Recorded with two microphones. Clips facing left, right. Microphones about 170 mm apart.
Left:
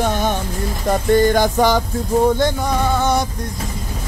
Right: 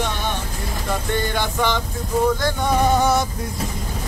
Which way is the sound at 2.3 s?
25° left (ahead or behind).